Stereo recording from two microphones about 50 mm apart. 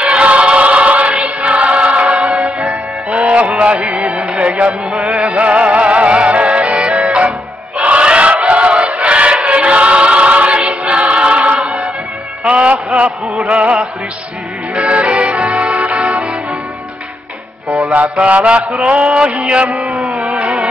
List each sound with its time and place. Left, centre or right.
0.0 s choir: right
2.3 s music: centre
2.7 s music: right
7.8 s choir: right
12.4 s music: right
14.8 s music: right
17.6 s mantra: right
18.7 s a sound: right